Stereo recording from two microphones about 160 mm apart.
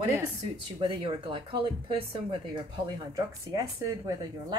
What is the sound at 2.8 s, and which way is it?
Speech, 20° right (ahead or behind).